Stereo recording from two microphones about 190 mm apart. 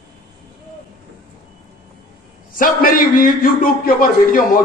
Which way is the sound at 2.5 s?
50° left (ahead or behind).